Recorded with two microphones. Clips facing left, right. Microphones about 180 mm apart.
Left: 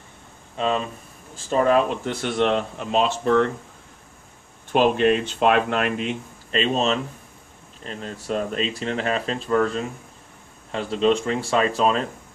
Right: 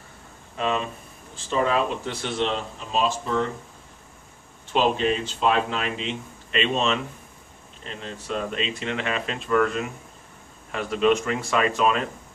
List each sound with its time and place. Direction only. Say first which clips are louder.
0.6 s speech: left 2 dB; 30° left (ahead or behind)
1.3 s speech: left 5 dB; 45° left (ahead or behind); by 3.5 s 65° left (ahead or behind)
4.7 s speech: left 4 dB; 60° left (ahead or behind)
6.5 s speech: left 2 dB; 40° left (ahead or behind)